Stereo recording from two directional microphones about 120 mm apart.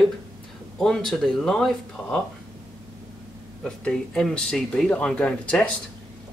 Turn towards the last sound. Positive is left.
turn(degrees=10)  # may be behind; listen again after turning